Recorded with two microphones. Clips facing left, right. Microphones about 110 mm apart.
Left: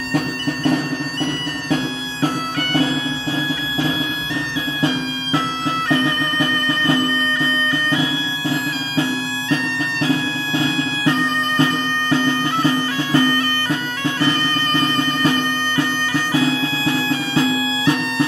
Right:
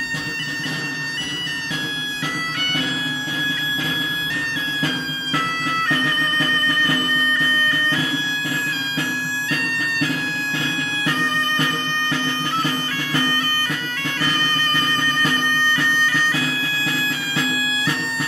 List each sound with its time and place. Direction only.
2.2 s bagpipes: 35° left (ahead or behind)
5.9 s bagpipes: 25° left (ahead or behind)
16.3 s music: 30° left (ahead or behind)